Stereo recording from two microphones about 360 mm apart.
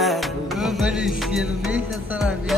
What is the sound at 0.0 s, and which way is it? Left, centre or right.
Music, centre.